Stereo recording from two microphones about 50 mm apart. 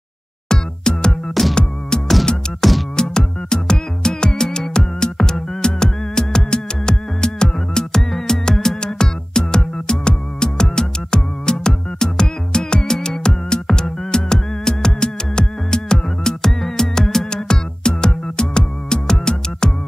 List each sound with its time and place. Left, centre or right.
0.5 s music: centre
2.6 s music: centre